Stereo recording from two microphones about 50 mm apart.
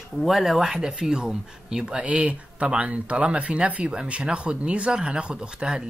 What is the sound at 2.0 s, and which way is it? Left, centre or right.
Speech, right.